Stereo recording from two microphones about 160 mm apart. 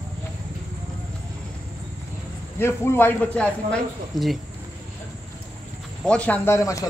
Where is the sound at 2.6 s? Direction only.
15° left (ahead or behind).